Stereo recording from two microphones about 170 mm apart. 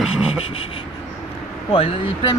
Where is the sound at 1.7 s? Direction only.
35° left (ahead or behind).